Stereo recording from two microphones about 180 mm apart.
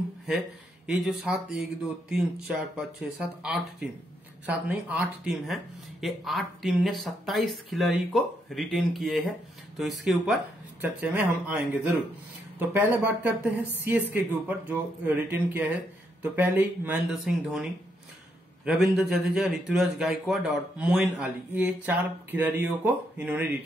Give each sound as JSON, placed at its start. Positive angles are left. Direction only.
{"t": 0.8, "sound": "speech", "side_deg": -5}
{"t": 10.8, "sound": "speech", "side_deg": -10}
{"t": 18.7, "sound": "speech", "side_deg": -5}